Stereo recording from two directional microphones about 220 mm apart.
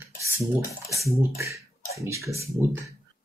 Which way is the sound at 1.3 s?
15° right (ahead or behind).